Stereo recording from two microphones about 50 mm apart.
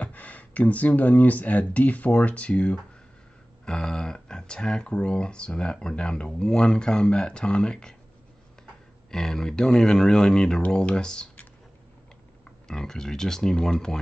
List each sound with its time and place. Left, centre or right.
0.0 s speech: left
9.1 s speech: centre
12.4 s speech: centre